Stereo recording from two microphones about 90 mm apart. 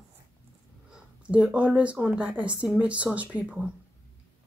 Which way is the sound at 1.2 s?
15° right (ahead or behind).